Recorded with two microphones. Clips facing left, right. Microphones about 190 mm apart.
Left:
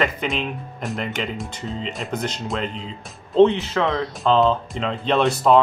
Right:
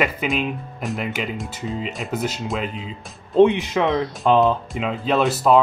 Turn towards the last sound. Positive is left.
turn(degrees=-5)  # may be behind; listen again after turning